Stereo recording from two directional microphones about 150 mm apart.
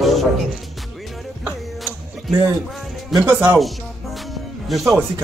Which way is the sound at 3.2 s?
15° right (ahead or behind).